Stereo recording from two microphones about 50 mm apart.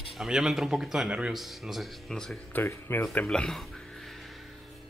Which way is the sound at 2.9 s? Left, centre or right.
Left.